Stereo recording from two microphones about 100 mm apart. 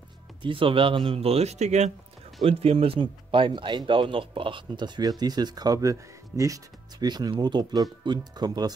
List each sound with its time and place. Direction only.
0.4 s speech: 60° right (ahead or behind); by 1.6 s 85° right
2.4 s speech: 75° right (ahead or behind); by 8.7 s 40° right (ahead or behind)